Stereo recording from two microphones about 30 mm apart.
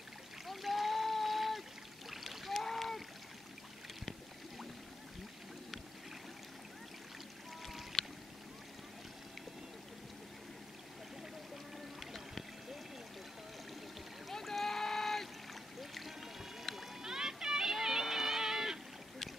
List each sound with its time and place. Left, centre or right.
0.5 s a sound: centre
2.0 s rowboat: centre
7.9 s boat: centre
14.3 s rowboat: centre
15.8 s music: centre
17.0 s a sound: centre